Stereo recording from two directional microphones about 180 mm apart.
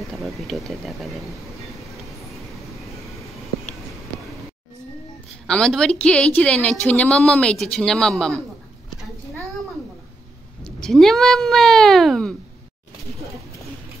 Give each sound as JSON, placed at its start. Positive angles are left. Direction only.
{"t": 0.1, "sound": "a woman's voice", "side_deg": 0}
{"t": 5.5, "sound": "a woman's voice", "side_deg": 5}
{"t": 10.6, "sound": "a woman's voice", "side_deg": 0}